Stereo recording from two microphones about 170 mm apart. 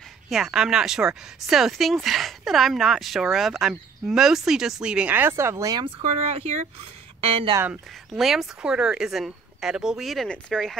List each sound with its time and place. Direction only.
0.3 s speech: 5° right (ahead or behind); by 7.5 s 35° right (ahead or behind)
7.5 s speech: 10° right (ahead or behind)
8.1 s speech: centre (ahead or behind)